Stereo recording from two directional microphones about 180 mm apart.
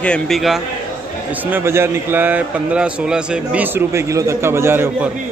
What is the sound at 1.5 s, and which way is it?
A man's voice, 15° right (ahead or behind).